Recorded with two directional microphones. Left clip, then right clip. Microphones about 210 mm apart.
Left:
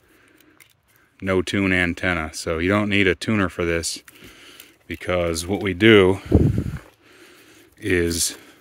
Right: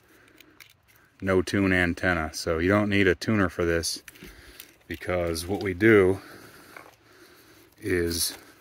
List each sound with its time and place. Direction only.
1.2 s speech: 15° left (ahead or behind); by 6.3 s 35° left (ahead or behind)
7.8 s speech: 35° left (ahead or behind)